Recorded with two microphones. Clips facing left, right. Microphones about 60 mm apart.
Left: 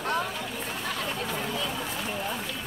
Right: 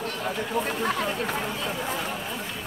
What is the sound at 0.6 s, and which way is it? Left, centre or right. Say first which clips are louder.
Chatter: right 6 dB; right.